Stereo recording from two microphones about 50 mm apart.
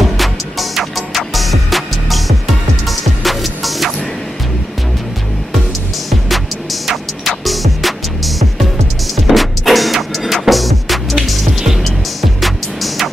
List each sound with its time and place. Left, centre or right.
0.2 s music: centre
6.0 s music: centre